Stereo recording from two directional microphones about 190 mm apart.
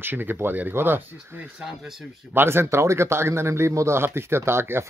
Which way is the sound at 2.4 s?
15° right (ahead or behind).